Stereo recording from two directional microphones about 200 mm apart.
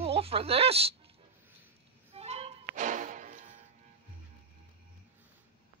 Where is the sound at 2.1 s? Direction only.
30° right (ahead or behind).